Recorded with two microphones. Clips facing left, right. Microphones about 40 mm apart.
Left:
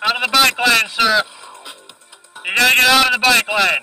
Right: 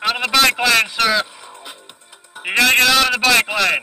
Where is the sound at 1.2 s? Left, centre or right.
Left.